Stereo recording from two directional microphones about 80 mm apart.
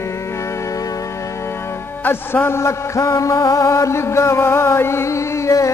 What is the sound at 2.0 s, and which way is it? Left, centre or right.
Music, left.